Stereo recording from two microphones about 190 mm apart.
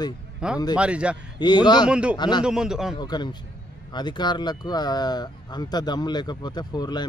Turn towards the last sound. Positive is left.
turn(degrees=20)  # may be behind; listen again after turning